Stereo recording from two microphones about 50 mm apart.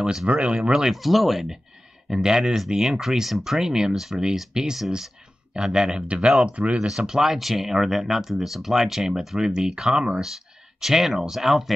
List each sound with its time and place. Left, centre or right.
0.0 s speech: centre
0.9 s speech: centre; by 6.9 s right
7.0 s speech: centre